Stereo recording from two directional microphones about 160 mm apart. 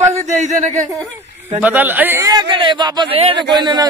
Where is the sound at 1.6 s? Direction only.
10° right (ahead or behind).